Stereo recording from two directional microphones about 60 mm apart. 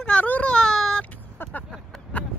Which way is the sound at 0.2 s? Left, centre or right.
Left.